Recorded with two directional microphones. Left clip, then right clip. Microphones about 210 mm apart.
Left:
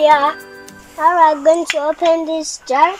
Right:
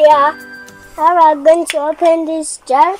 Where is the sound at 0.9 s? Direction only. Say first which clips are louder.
Right 2 dB; 5° right (ahead or behind).